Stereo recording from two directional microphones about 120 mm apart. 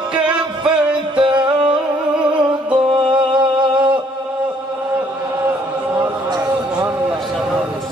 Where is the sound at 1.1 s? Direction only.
45° right (ahead or behind).